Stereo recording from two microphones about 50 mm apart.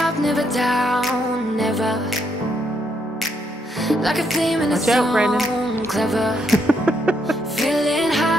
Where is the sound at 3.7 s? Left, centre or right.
Centre.